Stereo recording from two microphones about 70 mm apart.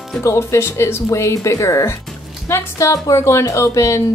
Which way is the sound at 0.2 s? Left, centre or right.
Left.